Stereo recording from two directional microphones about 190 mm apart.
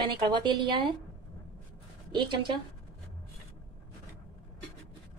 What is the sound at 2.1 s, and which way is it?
Speech, 25° right (ahead or behind).